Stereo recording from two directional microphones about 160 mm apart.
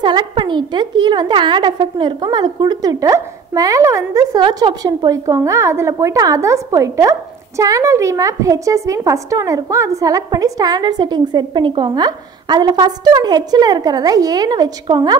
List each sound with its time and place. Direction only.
0.0 s a woman's voice: 30° right (ahead or behind)